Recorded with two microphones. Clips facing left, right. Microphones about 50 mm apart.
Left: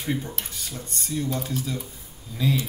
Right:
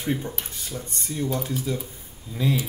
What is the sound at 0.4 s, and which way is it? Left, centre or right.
Speech, centre.